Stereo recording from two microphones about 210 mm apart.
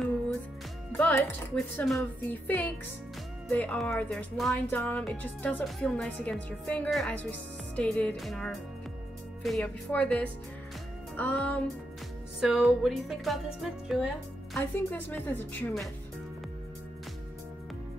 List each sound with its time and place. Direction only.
0.9 s a woman's voice: 10° left (ahead or behind)
14.5 s a woman's voice: 10° left (ahead or behind)